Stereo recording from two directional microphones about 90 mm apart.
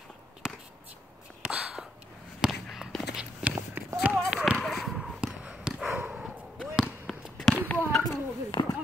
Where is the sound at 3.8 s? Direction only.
20° right (ahead or behind).